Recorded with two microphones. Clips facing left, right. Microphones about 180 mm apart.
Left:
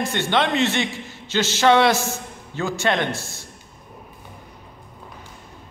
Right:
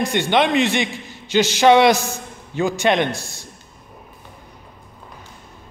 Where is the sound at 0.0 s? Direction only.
15° right (ahead or behind).